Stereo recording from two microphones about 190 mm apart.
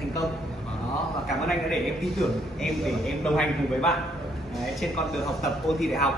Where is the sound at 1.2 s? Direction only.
Centre (ahead or behind).